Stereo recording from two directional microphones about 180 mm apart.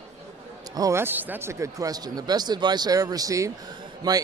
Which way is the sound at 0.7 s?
15° right (ahead or behind).